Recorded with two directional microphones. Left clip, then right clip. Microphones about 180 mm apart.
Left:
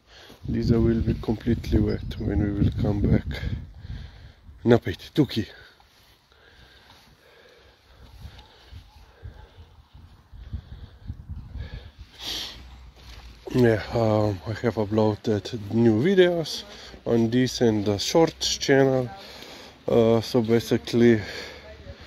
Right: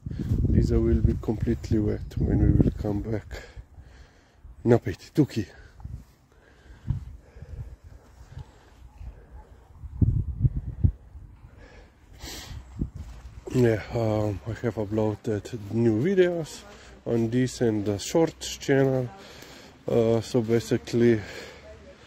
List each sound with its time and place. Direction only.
0.2 s a sound: 15° right (ahead or behind)
0.6 s speech: 30° right (ahead or behind)
4.6 s speech: 25° right (ahead or behind)
13.5 s speech: 20° right (ahead or behind)